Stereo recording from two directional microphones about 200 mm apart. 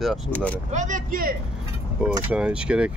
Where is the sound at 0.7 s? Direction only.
40° right (ahead or behind).